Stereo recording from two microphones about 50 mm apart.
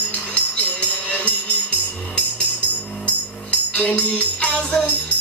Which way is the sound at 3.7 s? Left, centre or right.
Left.